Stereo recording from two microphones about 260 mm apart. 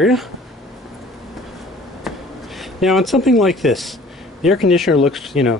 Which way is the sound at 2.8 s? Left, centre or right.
Centre.